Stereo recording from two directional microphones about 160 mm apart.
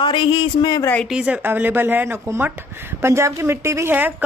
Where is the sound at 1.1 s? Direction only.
5° right (ahead or behind).